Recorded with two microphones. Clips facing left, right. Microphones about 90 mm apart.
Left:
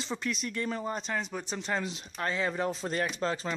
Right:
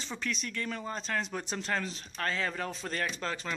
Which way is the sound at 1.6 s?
15° left (ahead or behind).